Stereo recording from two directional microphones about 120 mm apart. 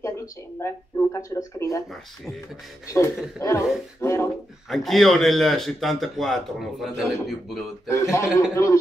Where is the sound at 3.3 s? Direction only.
25° left (ahead or behind).